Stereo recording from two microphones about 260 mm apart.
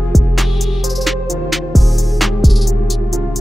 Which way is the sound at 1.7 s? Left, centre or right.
Centre.